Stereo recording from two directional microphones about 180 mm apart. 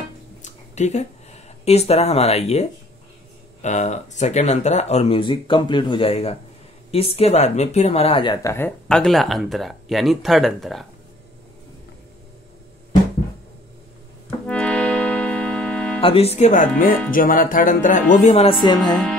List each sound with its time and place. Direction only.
0.4 s a sound: 40° left (ahead or behind)
3.6 s speech: 40° left (ahead or behind); by 8.5 s 25° left (ahead or behind)
8.5 s speech: 10° left (ahead or behind)
14.4 s music: 5° left (ahead or behind)
16.0 s speech: 30° left (ahead or behind)